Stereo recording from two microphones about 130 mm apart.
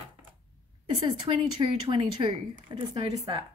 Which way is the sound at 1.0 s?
35° right (ahead or behind).